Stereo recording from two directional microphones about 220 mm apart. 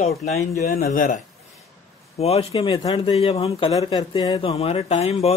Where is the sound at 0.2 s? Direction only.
30° left (ahead or behind).